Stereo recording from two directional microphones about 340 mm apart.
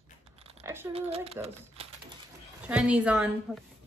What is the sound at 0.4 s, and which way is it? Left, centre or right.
Speech, centre.